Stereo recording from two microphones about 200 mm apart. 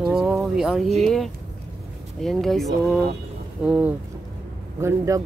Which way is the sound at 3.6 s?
5° right (ahead or behind).